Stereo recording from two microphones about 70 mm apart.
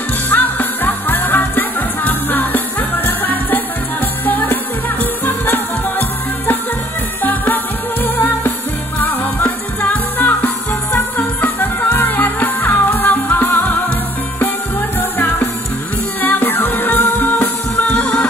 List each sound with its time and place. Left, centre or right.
0.3 s music: left
15.0 s music: left